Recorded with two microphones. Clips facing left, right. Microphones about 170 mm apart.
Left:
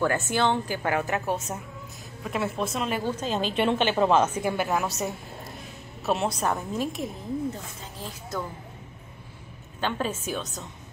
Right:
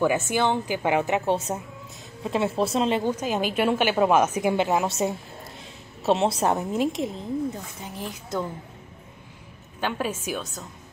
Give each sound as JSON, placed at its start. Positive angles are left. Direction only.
{"t": 0.0, "sound": "a woman's voice", "side_deg": -15}
{"t": 3.1, "sound": "a woman's voice", "side_deg": -10}
{"t": 9.8, "sound": "a woman's voice", "side_deg": -10}